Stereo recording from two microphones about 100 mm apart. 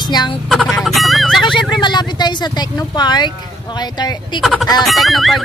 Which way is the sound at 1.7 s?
50° left (ahead or behind).